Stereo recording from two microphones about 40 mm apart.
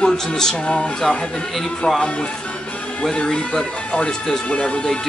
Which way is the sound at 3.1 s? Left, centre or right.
Left.